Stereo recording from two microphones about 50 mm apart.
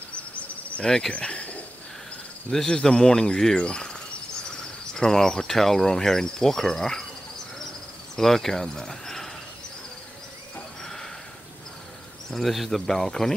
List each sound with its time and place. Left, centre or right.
0.8 s speech: centre
1.1 s cricket: left
2.5 s speech: centre
8.2 s speech: centre
10.8 s a sound: centre
12.3 s speech: centre